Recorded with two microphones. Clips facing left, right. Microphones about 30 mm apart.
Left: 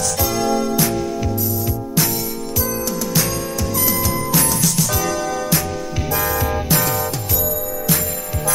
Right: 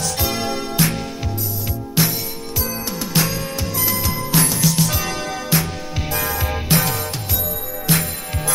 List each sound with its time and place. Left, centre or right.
0.2 s music: right
6.7 s music: right
7.9 s music: right